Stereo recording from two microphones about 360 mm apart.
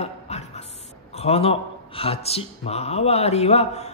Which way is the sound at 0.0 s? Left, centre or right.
Centre.